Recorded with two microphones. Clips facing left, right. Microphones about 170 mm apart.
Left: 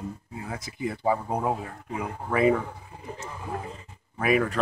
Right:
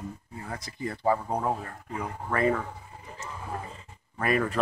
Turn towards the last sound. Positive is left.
turn(degrees=5)  # may be behind; listen again after turning